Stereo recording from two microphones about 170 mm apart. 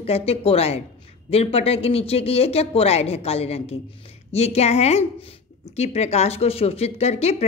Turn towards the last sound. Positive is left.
turn(degrees=40)  # may be behind; listen again after turning